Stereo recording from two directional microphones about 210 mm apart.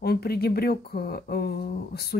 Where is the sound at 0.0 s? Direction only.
50° left (ahead or behind).